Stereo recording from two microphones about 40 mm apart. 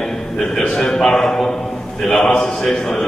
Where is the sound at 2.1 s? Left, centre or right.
Left.